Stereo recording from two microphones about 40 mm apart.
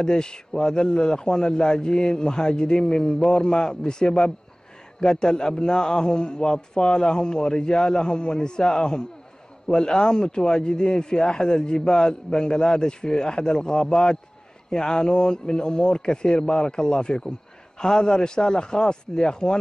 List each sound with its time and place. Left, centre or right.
0.0 s a man's voice: centre